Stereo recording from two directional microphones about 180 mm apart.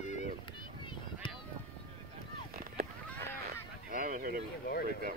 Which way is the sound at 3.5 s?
50° right (ahead or behind).